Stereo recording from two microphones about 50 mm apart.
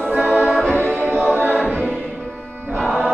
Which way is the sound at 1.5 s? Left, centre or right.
Left.